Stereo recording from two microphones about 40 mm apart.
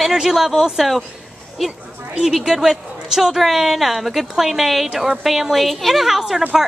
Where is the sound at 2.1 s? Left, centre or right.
Centre.